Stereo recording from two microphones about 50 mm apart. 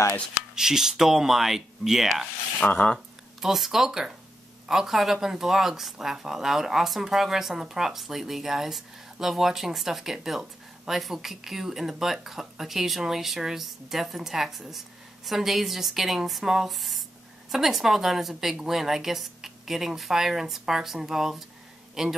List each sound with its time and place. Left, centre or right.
0.6 s speech: centre
2.6 s speech: left
3.3 s speech: centre